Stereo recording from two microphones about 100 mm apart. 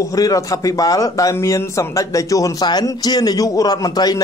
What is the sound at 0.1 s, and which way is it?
A man's voice, 35° left (ahead or behind).